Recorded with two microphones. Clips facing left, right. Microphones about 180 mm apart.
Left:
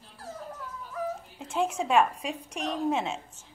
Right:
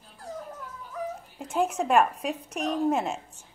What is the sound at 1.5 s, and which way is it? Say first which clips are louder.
Speech: right 2 dB; 10° right (ahead or behind).